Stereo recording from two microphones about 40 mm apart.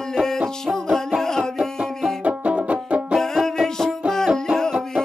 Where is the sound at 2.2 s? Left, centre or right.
Right.